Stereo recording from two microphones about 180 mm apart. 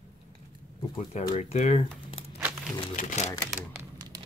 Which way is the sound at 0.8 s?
30° left (ahead or behind).